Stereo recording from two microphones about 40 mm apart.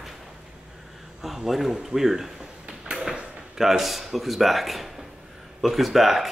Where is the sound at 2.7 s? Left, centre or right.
Centre.